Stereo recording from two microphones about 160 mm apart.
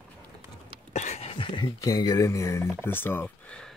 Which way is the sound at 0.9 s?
45° left (ahead or behind).